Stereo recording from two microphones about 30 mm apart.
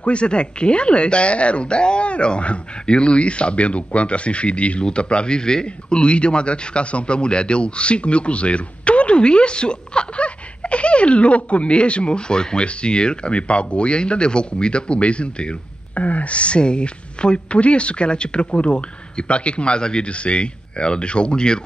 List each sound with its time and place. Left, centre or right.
0.0 s a man's voice: left
15.9 s a man's voice: left